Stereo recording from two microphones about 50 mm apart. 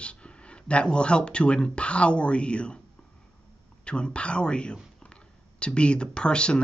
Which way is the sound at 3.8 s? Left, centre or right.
Centre.